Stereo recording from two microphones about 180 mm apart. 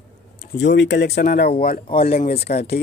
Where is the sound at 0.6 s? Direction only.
80° left.